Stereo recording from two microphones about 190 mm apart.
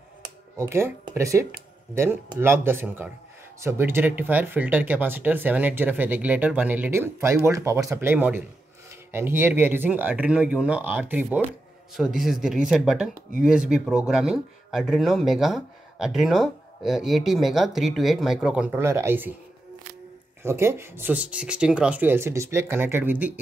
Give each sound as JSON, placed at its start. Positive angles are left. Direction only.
{"t": 0.6, "sound": "speech", "side_deg": -15}
{"t": 20.4, "sound": "speech", "side_deg": -15}